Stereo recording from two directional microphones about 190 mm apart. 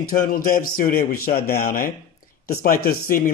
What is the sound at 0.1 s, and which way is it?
Speech, 50° left (ahead or behind).